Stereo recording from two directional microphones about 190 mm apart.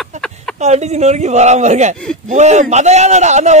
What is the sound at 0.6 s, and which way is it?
A man's voice, 35° right (ahead or behind).